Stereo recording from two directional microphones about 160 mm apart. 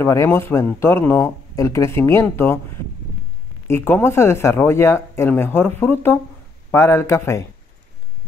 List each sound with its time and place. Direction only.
0.0 s speech: 15° left (ahead or behind)
3.6 s speech: 15° left (ahead or behind)